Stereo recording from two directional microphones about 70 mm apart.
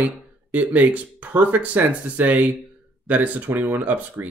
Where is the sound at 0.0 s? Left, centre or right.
Right.